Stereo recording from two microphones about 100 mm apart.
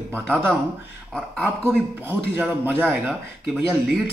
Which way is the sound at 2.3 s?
20° right (ahead or behind).